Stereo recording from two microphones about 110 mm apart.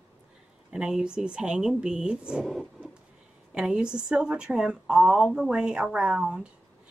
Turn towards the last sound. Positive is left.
turn(degrees=-5)  # may be behind; listen again after turning